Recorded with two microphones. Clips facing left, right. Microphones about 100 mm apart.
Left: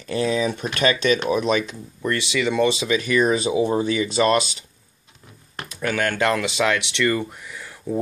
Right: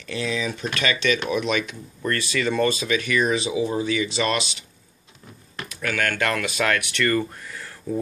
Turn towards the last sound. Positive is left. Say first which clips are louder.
# left 1 dB
turn(degrees=15)  # may be behind; listen again after turning